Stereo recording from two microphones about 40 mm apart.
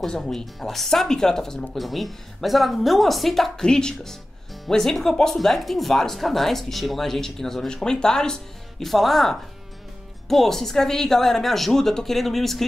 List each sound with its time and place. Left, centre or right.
0.0 s speech: centre
1.7 s a woman's voice: centre
3.6 s a woman's voice: centre
8.8 s a woman's voice: centre